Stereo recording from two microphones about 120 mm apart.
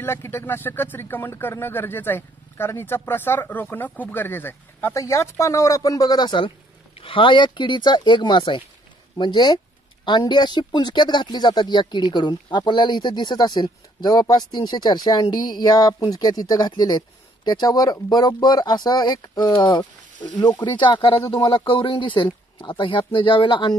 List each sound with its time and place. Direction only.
0.0 s speech: 20° left (ahead or behind); by 23.8 s 40° left (ahead or behind)